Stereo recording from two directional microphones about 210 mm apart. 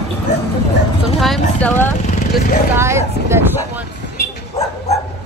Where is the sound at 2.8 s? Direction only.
15° right (ahead or behind).